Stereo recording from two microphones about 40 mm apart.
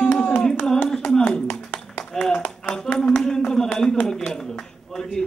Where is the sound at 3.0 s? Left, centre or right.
Centre.